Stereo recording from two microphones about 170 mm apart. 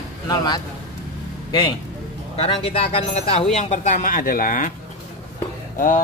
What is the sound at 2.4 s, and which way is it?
Speech, 35° left (ahead or behind).